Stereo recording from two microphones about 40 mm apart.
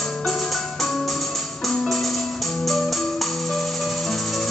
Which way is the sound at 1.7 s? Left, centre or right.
Centre.